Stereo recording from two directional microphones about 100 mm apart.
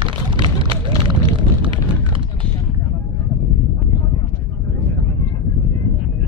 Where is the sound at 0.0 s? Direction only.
60° right (ahead or behind).